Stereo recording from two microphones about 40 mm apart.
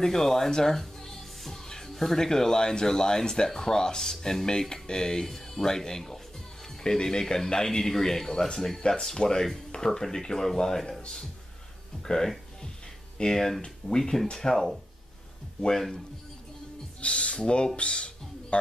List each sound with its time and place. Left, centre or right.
0.0 s music: centre
2.2 s speech: centre
12.0 s speech: centre
17.0 s speech: left
17.7 s music: left